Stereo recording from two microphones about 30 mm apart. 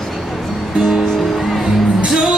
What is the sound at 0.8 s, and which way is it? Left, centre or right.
Music, centre.